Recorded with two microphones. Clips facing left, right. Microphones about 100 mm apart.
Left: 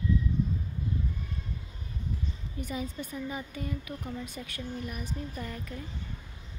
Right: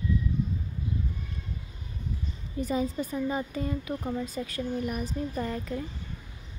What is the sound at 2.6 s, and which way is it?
A woman's voice, 35° right (ahead or behind).